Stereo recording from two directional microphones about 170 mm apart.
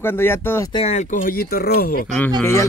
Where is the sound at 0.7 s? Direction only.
40° left (ahead or behind); by 2.0 s 65° left (ahead or behind).